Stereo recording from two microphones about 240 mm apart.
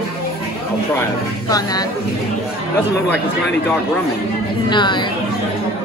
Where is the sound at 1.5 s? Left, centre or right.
Centre.